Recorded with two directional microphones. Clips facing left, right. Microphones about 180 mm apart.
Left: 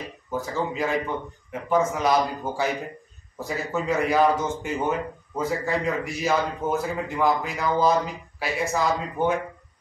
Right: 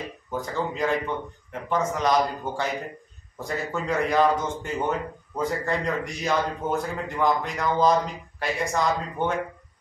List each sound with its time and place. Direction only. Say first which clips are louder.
0.3 s speech: left 1 dB; 5° left (ahead or behind)